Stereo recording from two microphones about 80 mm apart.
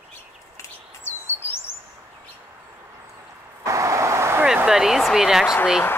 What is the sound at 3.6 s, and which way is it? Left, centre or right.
Vehicle, right.